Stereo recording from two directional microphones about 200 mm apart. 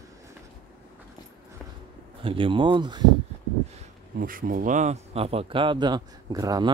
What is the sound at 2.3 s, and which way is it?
Speech, 25° right (ahead or behind).